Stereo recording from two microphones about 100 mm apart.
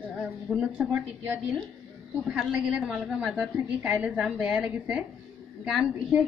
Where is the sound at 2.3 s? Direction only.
5° right (ahead or behind).